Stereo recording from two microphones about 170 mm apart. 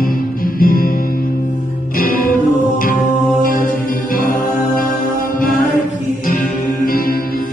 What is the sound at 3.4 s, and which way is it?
Mantra, 55° left (ahead or behind).